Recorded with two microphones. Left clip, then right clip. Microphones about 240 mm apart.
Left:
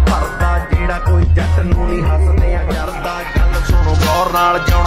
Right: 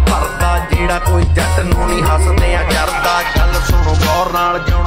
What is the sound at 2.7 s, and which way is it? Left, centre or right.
Music, right.